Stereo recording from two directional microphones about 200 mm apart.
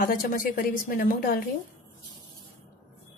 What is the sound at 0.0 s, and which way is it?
A woman's voice, 45° left (ahead or behind).